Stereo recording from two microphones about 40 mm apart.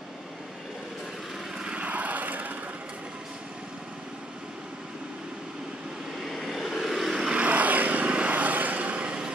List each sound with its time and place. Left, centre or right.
1.8 s vehicle: right
6.2 s vehicle: centre
7.3 s vehicle: right